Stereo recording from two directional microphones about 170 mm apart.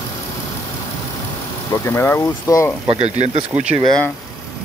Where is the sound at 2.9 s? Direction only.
40° right (ahead or behind).